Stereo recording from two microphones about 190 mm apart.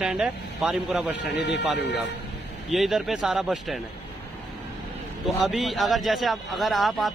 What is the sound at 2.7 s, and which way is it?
A man's voice, centre (ahead or behind).